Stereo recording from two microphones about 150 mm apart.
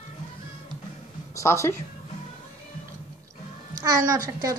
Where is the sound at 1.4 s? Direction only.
20° left (ahead or behind).